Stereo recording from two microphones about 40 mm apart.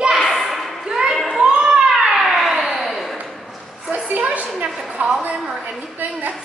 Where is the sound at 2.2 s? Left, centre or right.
Centre.